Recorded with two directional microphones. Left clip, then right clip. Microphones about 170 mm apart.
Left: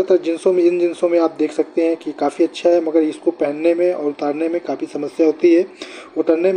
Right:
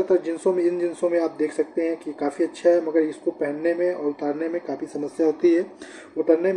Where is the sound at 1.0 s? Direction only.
20° left (ahead or behind).